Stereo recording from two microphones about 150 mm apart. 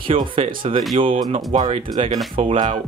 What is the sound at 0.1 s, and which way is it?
Speech, 35° right (ahead or behind).